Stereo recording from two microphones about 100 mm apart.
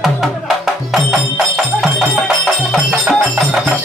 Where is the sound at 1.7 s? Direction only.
Centre (ahead or behind).